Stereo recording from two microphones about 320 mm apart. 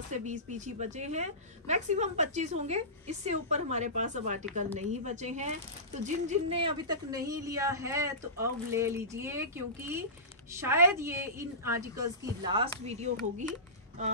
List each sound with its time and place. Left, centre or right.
0.1 s a woman's voice: right